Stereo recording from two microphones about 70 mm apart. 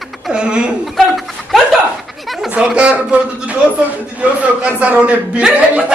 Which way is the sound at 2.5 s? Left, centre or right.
Centre.